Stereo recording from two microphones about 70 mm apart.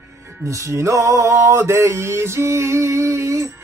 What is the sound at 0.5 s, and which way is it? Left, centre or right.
Music, right.